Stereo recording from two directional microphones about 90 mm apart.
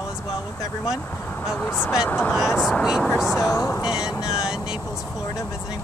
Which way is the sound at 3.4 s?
30° left (ahead or behind).